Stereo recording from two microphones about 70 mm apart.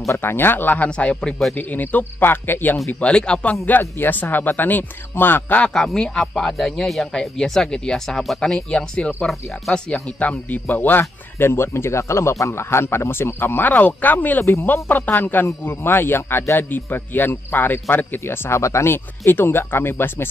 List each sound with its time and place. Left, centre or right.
0.0 s speech: left
0.8 s speech: centre
1.5 s speech: left
2.9 s speech: centre
4.0 s speech: left
5.6 s speech: centre; by 14.4 s left
14.4 s speech: left
14.7 s speech: left